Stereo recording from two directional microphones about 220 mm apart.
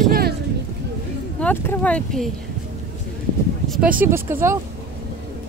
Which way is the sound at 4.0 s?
10° right (ahead or behind).